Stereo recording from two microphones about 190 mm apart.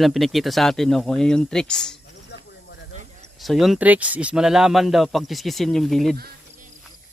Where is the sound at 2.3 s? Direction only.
65° left (ahead or behind).